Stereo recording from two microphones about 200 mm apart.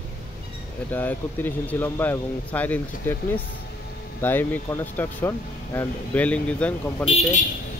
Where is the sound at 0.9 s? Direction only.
10° left (ahead or behind).